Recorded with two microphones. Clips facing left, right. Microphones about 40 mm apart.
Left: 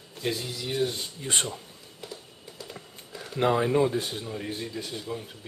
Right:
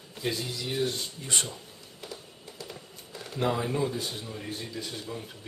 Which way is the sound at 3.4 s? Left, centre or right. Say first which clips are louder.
Left 5 dB; left.